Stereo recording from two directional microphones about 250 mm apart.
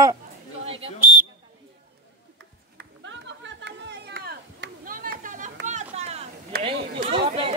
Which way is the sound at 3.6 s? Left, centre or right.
Right.